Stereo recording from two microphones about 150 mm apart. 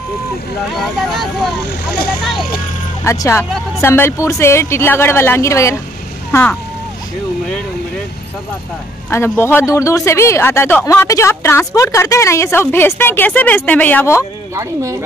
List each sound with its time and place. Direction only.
0.7 s speech: centre (ahead or behind)
3.0 s speech: 20° left (ahead or behind)
9.1 s speech: 15° left (ahead or behind)
14.5 s speech: 20° right (ahead or behind)